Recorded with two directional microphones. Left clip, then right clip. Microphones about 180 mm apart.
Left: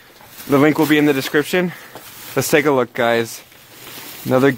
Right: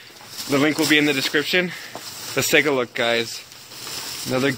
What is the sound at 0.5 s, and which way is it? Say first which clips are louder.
Speech: left 4 dB; 45° left (ahead or behind).